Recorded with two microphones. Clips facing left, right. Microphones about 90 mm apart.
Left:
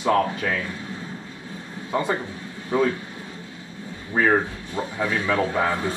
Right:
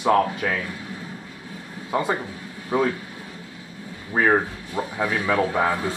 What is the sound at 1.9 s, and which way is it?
Speech, 20° right (ahead or behind).